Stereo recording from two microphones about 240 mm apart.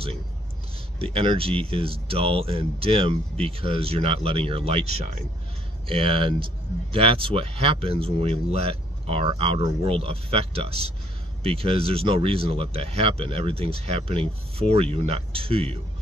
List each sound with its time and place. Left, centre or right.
0.9 s speech: right